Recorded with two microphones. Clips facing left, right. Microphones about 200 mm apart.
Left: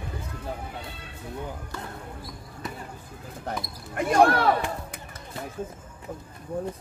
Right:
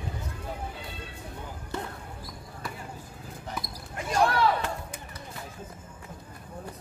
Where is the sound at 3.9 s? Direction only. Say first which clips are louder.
Left 5 dB; 60° left (ahead or behind).